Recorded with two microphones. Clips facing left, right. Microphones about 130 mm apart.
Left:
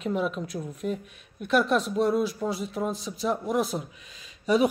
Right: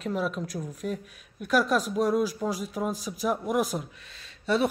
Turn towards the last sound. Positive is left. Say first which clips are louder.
# left 3 dB
turn(degrees=0)  # may be behind; listen again after turning